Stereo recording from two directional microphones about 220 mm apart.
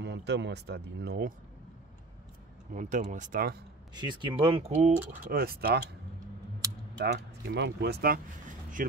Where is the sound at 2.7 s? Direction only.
35° right (ahead or behind).